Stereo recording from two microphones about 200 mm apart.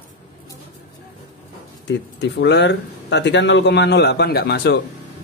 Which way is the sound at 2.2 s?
60° left (ahead or behind).